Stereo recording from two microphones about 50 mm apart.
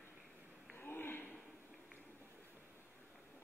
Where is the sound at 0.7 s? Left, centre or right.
Left.